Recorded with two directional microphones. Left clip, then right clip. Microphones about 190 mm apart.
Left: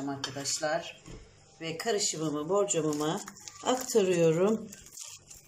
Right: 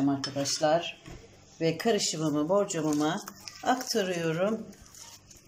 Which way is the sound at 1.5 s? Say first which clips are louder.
Right 8 dB; 25° right (ahead or behind).